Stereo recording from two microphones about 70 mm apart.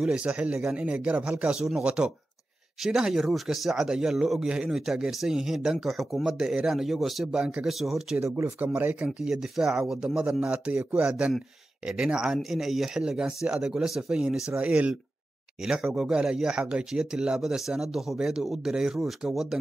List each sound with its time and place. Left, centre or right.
0.0 s a man's voice: centre
8.2 s speech: right
8.5 s a man's voice: right
9.3 s speech: centre